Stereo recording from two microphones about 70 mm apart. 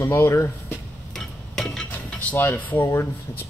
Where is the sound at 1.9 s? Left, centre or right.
Left.